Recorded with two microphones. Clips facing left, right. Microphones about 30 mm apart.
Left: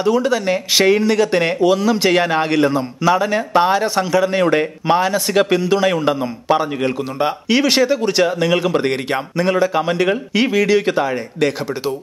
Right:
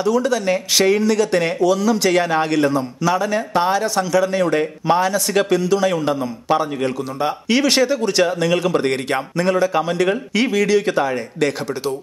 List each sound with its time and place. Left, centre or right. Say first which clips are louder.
0.0 s speech: left 2 dB; left
7.4 s speech: left 1 dB; centre